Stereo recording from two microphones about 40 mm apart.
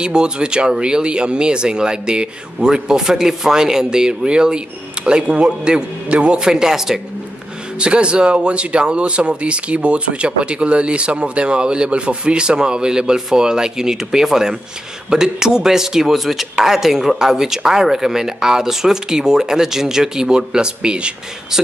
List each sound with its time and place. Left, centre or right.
0.0 s speech: right
6.4 s speech: centre
7.8 s speech: right